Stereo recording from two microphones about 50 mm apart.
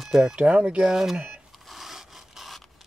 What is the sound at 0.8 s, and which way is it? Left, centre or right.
Speech, centre.